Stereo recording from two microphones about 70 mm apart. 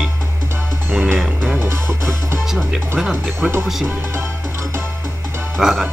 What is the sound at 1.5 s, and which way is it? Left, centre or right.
Music, right.